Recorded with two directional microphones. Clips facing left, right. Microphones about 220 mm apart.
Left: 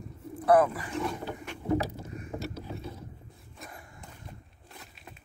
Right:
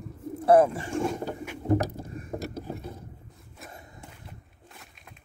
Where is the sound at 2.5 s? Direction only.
50° right (ahead or behind).